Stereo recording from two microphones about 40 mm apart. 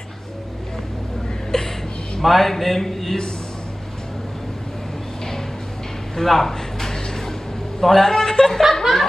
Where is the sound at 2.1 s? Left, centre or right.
Centre.